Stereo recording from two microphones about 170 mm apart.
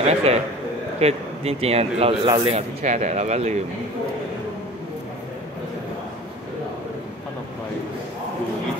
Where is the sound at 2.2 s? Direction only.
25° right (ahead or behind).